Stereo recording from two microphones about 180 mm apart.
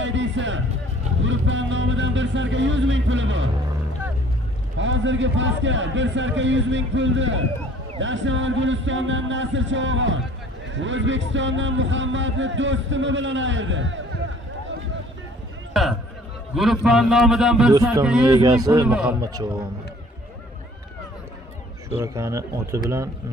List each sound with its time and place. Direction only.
0.0 s music: 90° right
1.2 s a sound: 90° right
4.7 s a man's voice: 90° right
15.7 s a sound: centre (ahead or behind)
16.5 s a man's voice: centre (ahead or behind)
18.3 s speech: 20° right (ahead or behind)
18.9 s speech: 5° right (ahead or behind)
21.9 s speech: 15° right (ahead or behind)